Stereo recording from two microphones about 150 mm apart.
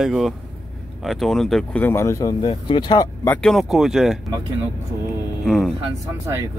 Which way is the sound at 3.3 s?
Centre (ahead or behind).